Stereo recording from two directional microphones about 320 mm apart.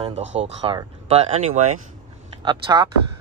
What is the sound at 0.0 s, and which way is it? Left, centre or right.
Speech, right.